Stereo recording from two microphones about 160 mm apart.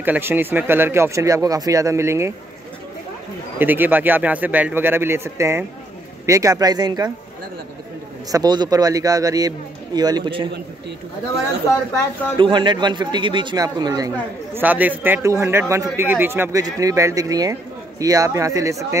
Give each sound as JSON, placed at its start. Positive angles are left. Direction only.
{"t": 0.0, "sound": "speech", "side_deg": -10}
{"t": 3.5, "sound": "speech", "side_deg": -10}
{"t": 8.3, "sound": "speech", "side_deg": -25}
{"t": 12.4, "sound": "speech", "side_deg": -30}
{"t": 14.5, "sound": "speech", "side_deg": -10}